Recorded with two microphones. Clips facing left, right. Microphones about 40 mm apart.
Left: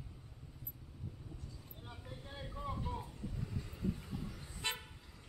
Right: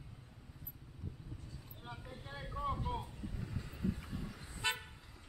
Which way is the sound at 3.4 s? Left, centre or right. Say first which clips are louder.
Right 1 dB; centre.